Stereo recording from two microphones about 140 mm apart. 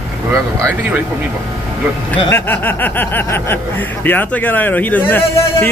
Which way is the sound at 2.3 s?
15° left (ahead or behind).